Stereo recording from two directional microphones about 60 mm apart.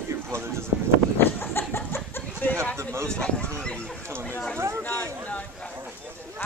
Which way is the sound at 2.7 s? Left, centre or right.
Right.